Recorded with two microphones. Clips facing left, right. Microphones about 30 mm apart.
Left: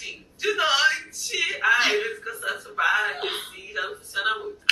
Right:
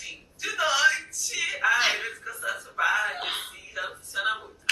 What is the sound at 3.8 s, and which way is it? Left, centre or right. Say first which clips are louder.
Speech: left 4 dB; left.